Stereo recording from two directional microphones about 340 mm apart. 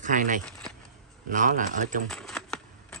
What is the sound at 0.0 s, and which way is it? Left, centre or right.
Speech, right.